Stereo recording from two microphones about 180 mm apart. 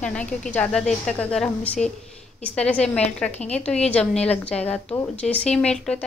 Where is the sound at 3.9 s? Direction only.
5° left (ahead or behind).